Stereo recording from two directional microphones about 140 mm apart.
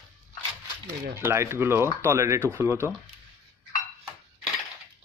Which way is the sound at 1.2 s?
20° right (ahead or behind).